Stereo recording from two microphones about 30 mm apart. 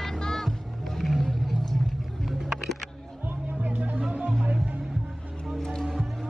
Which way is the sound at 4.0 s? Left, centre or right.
Right.